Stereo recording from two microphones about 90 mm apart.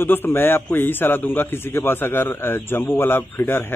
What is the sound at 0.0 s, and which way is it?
A man's voice, 25° left (ahead or behind).